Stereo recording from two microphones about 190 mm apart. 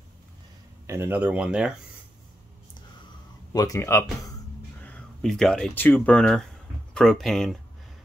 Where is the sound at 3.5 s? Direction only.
20° left (ahead or behind).